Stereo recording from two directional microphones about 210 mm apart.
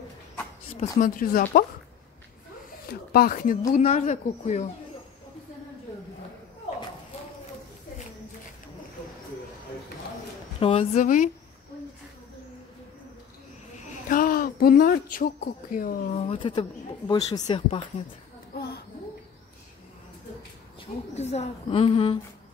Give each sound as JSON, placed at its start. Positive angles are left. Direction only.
{"t": 0.7, "sound": "a woman's voice", "side_deg": 30}
{"t": 1.1, "sound": "speech", "side_deg": 40}
{"t": 2.9, "sound": "speech", "side_deg": 45}
{"t": 10.6, "sound": "a woman's voice", "side_deg": 25}
{"t": 11.0, "sound": "speech", "side_deg": 40}
{"t": 14.0, "sound": "speech", "side_deg": 40}
{"t": 16.2, "sound": "a woman's voice", "side_deg": 25}
{"t": 18.5, "sound": "a sound", "side_deg": 50}
{"t": 20.8, "sound": "a woman's voice", "side_deg": 30}